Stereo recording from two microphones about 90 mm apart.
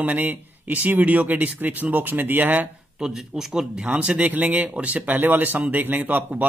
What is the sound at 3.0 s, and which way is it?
Speech, 5° right (ahead or behind).